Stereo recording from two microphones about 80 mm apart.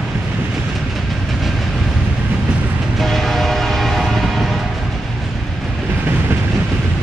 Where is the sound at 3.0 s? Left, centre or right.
Centre.